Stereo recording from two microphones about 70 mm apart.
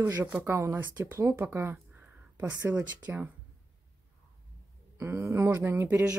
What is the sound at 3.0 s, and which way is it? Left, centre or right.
Speech, right.